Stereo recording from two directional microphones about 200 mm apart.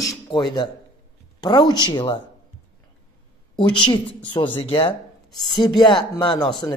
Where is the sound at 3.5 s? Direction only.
25° left (ahead or behind).